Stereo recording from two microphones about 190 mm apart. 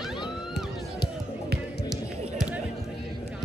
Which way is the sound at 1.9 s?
5° right (ahead or behind).